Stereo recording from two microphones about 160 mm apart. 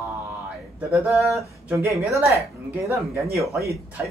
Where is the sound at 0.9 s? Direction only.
5° right (ahead or behind).